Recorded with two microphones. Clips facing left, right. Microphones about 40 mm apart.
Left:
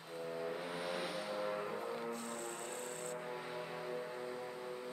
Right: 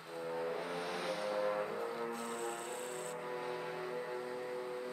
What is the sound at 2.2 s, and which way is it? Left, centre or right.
Music, right.